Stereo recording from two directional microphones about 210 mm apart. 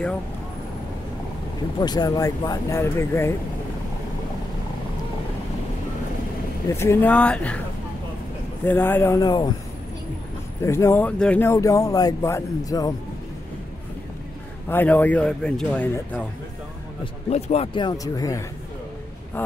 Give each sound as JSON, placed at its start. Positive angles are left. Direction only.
{"t": 1.8, "sound": "speech", "side_deg": 20}
{"t": 6.7, "sound": "speech", "side_deg": 15}
{"t": 8.6, "sound": "speech", "side_deg": 10}
{"t": 10.6, "sound": "speech", "side_deg": 10}
{"t": 14.7, "sound": "speech", "side_deg": 10}
{"t": 17.0, "sound": "speech", "side_deg": 30}